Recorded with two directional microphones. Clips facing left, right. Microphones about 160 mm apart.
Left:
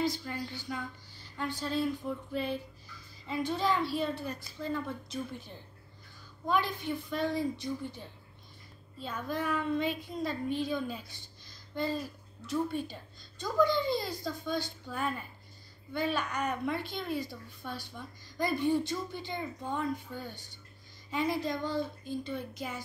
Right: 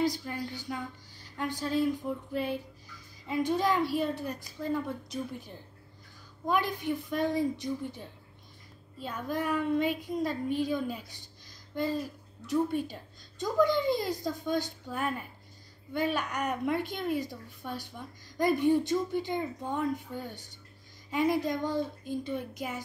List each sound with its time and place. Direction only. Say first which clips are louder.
0.0 s a woman's voice: right 3 dB; 15° right (ahead or behind)
9.0 s a woman's voice: right 2 dB; 10° right (ahead or behind)
12.4 s a woman's voice: right 4 dB; 15° right (ahead or behind)